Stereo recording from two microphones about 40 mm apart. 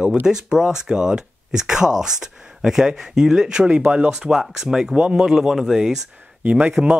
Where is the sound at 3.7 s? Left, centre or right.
Right.